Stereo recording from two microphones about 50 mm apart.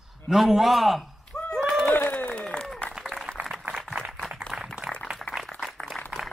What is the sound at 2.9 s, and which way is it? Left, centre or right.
Applause, centre.